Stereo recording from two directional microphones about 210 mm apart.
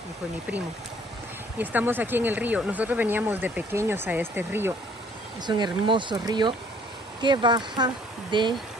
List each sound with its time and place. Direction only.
1.6 s speech: 10° right (ahead or behind)
5.5 s speech: 20° right (ahead or behind)